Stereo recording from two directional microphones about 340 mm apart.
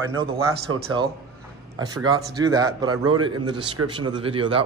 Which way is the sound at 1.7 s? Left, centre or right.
Centre.